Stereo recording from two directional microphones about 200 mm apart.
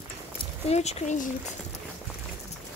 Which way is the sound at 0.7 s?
30° left (ahead or behind).